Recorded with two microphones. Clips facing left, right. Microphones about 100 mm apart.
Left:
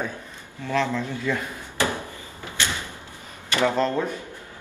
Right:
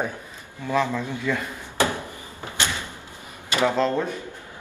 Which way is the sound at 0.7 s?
15° right (ahead or behind).